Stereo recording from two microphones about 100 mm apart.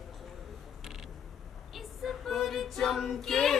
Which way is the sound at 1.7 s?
Centre (ahead or behind).